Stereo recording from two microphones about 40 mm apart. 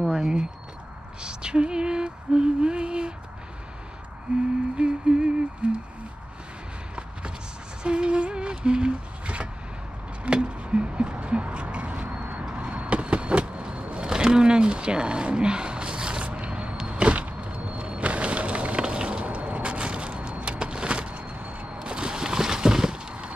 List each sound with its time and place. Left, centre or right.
0.1 s speech: centre
1.2 s music: right
4.3 s music: right
4.7 s humming: right
7.8 s humming: right
10.2 s a sound: right
12.5 s vehicle: right
14.0 s a sound: centre; by 21.6 s right
21.8 s a sound: right